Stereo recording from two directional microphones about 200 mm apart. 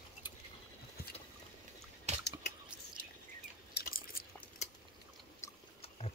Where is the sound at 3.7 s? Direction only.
50° left (ahead or behind).